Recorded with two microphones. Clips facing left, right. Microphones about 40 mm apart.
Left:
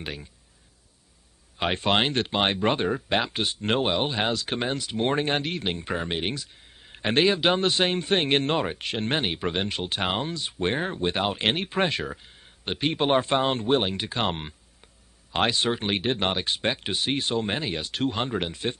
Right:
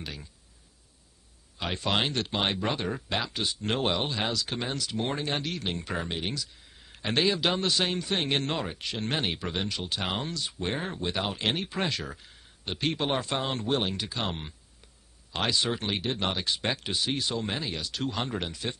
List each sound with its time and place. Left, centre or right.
0.0 s speech: left
1.6 s speech: left
3.8 s speech: centre
4.1 s speech: left
9.2 s speech: left
9.6 s speech: left
10.0 s speech: left
10.4 s speech: left
11.3 s speech: left